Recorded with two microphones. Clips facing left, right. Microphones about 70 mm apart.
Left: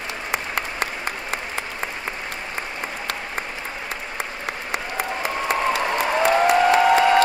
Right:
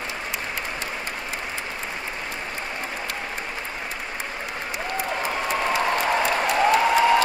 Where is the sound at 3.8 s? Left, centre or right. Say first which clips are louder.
Left 2 dB; left.